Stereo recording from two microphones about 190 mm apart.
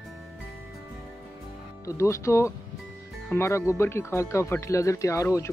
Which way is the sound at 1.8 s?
15° left (ahead or behind).